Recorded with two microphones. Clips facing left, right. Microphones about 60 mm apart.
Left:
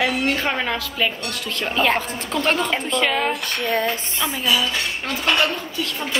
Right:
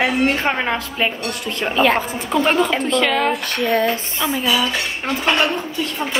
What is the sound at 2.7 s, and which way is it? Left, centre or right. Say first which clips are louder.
Speech: right 3 dB; centre.